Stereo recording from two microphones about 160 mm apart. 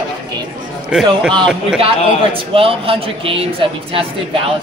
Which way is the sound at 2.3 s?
35° right (ahead or behind).